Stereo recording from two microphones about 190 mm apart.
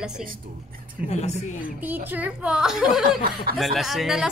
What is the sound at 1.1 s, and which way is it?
Speech, 35° left (ahead or behind).